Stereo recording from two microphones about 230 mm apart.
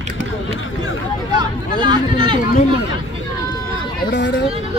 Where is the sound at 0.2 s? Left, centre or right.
Left.